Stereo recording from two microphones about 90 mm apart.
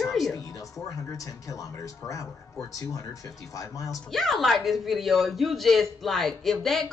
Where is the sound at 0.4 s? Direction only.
40° left (ahead or behind).